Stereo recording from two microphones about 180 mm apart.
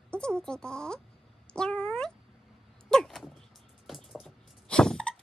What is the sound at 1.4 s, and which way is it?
Cat, 5° left (ahead or behind).